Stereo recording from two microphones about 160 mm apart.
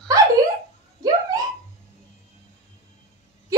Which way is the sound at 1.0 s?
20° right (ahead or behind).